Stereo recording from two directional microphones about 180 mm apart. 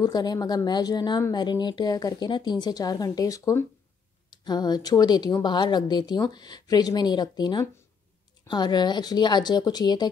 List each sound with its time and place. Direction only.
0.0 s speech: 20° left (ahead or behind)